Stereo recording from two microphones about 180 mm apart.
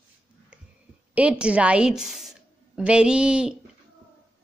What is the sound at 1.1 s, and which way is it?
A woman's voice, 5° right (ahead or behind).